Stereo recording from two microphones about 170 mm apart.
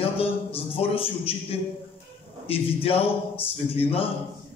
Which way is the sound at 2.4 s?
35° left (ahead or behind).